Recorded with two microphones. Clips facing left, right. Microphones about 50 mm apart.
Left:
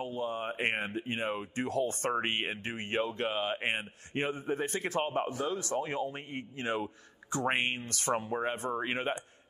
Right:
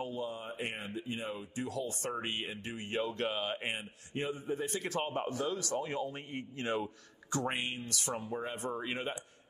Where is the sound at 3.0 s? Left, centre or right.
Left.